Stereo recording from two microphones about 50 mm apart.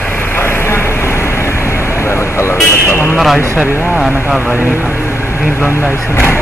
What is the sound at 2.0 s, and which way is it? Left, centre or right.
Vehicle, left.